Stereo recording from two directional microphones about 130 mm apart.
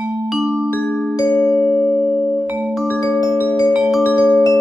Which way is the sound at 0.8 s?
10° left (ahead or behind).